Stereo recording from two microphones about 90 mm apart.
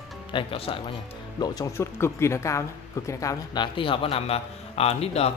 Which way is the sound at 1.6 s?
30° left (ahead or behind).